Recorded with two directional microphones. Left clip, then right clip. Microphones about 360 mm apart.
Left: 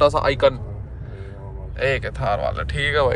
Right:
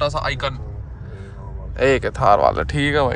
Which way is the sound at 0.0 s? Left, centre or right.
Centre.